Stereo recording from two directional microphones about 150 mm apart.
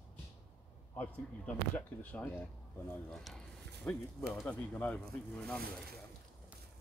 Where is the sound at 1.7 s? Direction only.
10° left (ahead or behind).